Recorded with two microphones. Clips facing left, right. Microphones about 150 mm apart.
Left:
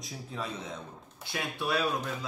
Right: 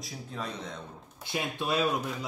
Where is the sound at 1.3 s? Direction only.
20° right (ahead or behind).